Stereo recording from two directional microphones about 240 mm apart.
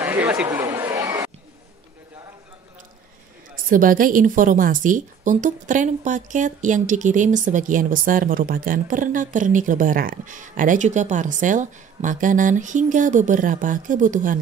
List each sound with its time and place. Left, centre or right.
0.0 s chatter: centre
3.5 s a woman's voice: right